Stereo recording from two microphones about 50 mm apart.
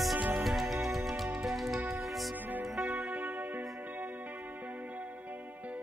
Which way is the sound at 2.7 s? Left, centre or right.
Centre.